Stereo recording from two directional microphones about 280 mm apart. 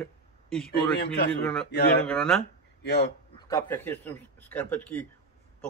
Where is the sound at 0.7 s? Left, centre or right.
Left.